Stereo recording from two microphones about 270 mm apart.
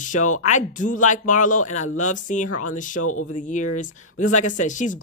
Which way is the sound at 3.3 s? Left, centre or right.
Left.